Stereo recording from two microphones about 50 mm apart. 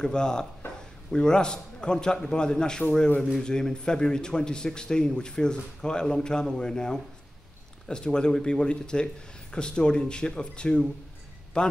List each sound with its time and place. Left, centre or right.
0.0 s a man's voice: centre